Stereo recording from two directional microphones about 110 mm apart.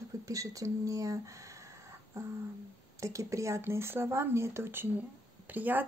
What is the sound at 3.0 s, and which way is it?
Speech, 30° right (ahead or behind).